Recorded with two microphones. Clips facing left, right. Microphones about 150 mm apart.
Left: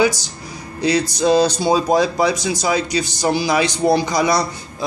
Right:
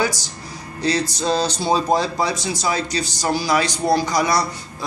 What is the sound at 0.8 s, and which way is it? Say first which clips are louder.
A man's voice: left 4 dB; 15° left (ahead or behind).